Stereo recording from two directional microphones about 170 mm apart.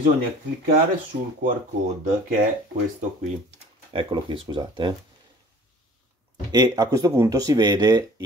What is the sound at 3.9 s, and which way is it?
Speech, 30° right (ahead or behind).